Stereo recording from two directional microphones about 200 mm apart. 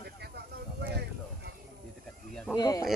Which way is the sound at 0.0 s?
55° right (ahead or behind).